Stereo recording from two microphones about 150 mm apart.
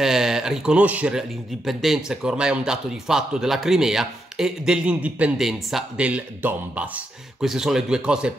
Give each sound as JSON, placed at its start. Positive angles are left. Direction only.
{"t": 0.0, "sound": "speech", "side_deg": -5}